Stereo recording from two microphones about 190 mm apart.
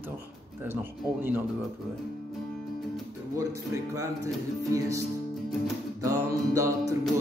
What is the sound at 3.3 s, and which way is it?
Music, 15° right (ahead or behind).